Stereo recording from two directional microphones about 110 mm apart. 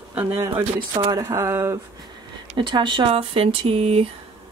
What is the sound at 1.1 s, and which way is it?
Speech, 30° right (ahead or behind).